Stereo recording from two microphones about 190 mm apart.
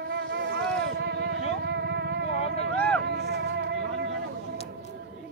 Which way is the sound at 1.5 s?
60° right (ahead or behind).